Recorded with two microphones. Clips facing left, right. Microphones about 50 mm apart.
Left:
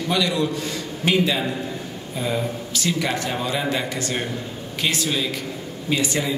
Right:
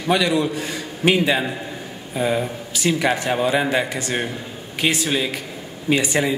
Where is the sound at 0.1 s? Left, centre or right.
Right.